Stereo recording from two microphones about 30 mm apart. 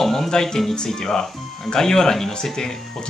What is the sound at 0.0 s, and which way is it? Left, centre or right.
Speech, centre.